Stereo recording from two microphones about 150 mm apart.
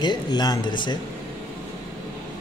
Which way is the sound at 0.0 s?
30° left (ahead or behind).